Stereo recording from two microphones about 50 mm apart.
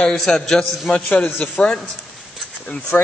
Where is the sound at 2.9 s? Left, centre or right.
Left.